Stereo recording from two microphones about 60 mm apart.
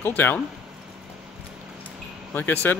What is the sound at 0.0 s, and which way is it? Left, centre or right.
Speech, left.